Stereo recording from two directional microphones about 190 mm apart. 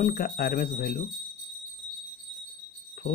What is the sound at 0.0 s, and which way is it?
Speech, 50° left (ahead or behind).